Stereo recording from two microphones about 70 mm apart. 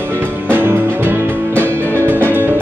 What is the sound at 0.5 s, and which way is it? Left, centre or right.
Music, right.